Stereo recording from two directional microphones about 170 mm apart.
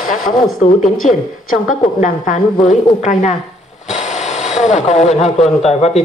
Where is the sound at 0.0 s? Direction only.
55° left (ahead or behind).